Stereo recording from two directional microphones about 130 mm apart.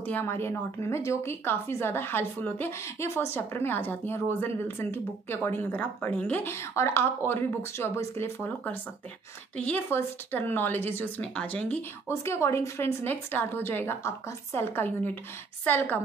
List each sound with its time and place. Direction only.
0.0 s a woman's voice: 15° left (ahead or behind)
9.6 s a woman's voice: 15° left (ahead or behind)
12.1 s a woman's voice: 20° left (ahead or behind)